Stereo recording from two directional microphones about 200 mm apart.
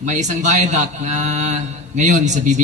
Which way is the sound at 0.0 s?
35° right (ahead or behind).